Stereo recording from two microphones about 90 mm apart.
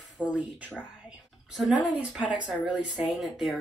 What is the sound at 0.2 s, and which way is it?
Speech, 15° right (ahead or behind).